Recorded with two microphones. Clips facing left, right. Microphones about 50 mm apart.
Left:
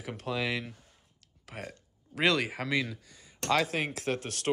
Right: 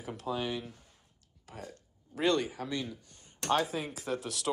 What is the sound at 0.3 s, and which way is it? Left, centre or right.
Speech, left.